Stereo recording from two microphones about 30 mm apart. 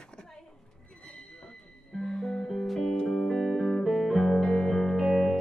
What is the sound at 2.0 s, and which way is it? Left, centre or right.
Music, centre.